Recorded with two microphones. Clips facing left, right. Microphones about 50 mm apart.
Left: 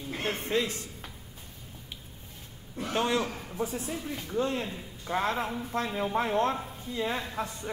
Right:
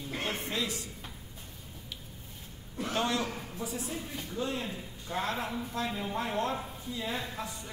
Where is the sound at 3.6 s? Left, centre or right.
Left.